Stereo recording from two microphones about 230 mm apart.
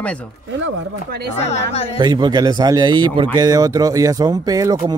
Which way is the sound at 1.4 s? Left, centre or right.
Left.